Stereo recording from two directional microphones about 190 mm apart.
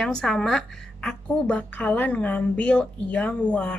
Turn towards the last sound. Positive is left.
turn(degrees=5)  # may be behind; listen again after turning